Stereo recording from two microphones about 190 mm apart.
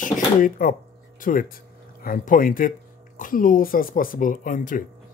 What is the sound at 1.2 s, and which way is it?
Speech, 45° left (ahead or behind).